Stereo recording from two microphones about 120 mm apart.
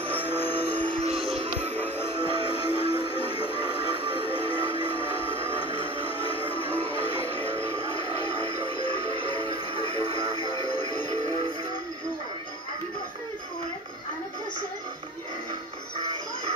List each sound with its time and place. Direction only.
0.7 s music: 10° left (ahead or behind)
1.0 s music: 55° right (ahead or behind)
1.8 s music: 20° left (ahead or behind)
2.1 s music: 45° right (ahead or behind)
5.4 s music: 50° right (ahead or behind)
9.0 s music: 50° right (ahead or behind)